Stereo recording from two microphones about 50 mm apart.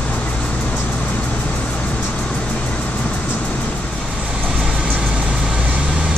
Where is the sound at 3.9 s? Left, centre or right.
Centre.